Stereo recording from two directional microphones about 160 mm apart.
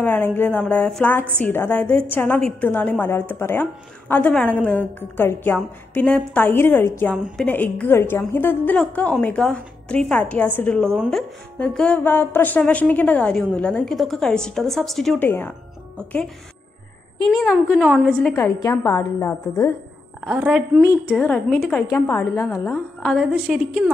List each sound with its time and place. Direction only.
0.0 s a woman's voice: 10° left (ahead or behind)
15.2 s a woman's voice: 15° left (ahead or behind)
17.5 s a woman's voice: 5° right (ahead or behind)
18.3 s a woman's voice: 15° left (ahead or behind)
20.2 s a woman's voice: 10° right (ahead or behind)
20.8 s a woman's voice: 20° left (ahead or behind); by 21.8 s 5° left (ahead or behind)
21.8 s a woman's voice: 15° left (ahead or behind)
23.0 s a woman's voice: centre (ahead or behind)